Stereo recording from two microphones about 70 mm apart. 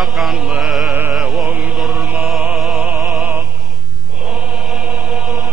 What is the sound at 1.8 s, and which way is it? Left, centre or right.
Mantra, centre.